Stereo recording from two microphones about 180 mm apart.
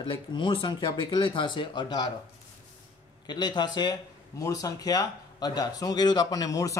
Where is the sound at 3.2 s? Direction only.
25° left (ahead or behind).